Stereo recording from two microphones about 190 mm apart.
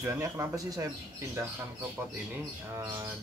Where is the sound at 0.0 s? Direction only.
15° right (ahead or behind).